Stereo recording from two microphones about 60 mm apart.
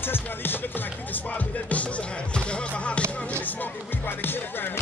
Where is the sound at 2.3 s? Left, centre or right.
Centre.